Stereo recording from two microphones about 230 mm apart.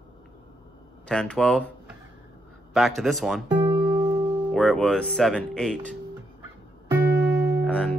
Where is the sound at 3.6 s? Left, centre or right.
Centre.